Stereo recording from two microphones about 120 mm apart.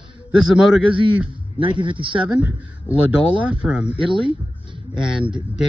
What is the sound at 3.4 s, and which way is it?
Speech, 10° right (ahead or behind).